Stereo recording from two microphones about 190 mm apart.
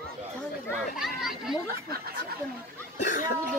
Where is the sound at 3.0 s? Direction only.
40° left (ahead or behind).